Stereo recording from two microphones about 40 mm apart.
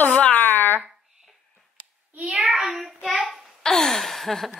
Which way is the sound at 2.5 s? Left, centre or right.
Centre.